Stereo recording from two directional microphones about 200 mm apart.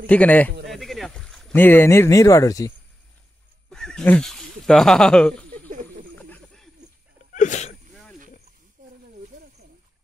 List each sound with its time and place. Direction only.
0.0 s a man's voice: 5° left (ahead or behind)
3.7 s speech: 5° left (ahead or behind)
6.3 s wild animals: centre (ahead or behind)
7.3 s a sound: 35° left (ahead or behind)
7.9 s a sound: 5° left (ahead or behind)
8.8 s snake: 45° right (ahead or behind)